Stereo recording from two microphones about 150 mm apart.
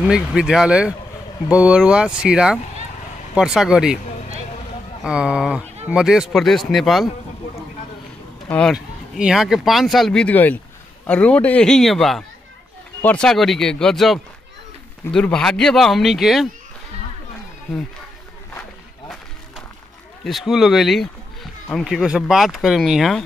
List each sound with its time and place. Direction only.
0.0 s speech: 5° right (ahead or behind)
4.0 s a sound: 55° left (ahead or behind)
5.0 s speech: 5° right (ahead or behind)
8.5 s speech: 5° left (ahead or behind)
8.7 s speech: 5° right (ahead or behind)
20.2 s speech: centre (ahead or behind)